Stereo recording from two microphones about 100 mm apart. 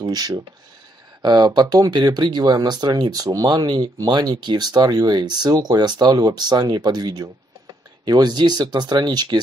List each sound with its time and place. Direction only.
0.0 s speech: 40° right (ahead or behind)